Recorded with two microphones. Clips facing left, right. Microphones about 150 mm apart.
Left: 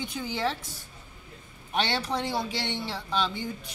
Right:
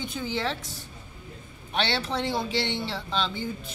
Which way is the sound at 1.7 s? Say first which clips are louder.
Even; 75° right (ahead or behind).